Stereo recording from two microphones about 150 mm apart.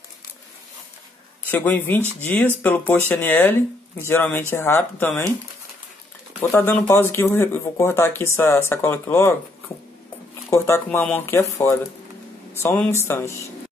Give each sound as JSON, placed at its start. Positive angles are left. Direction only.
{"t": 1.5, "sound": "speech", "side_deg": 10}
{"t": 2.0, "sound": "speech", "side_deg": -15}
{"t": 2.2, "sound": "speech", "side_deg": 10}
{"t": 6.5, "sound": "speech", "side_deg": 15}
{"t": 10.5, "sound": "speech", "side_deg": 15}